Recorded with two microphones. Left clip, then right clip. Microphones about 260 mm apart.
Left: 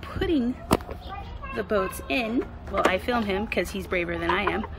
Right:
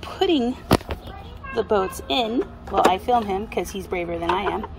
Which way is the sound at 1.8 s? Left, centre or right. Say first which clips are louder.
Right 4 dB; centre.